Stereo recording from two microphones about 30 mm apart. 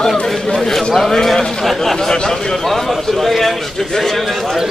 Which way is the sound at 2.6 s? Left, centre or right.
Centre.